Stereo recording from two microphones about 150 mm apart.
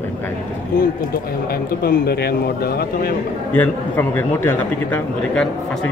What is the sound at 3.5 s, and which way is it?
A man's voice, 15° left (ahead or behind).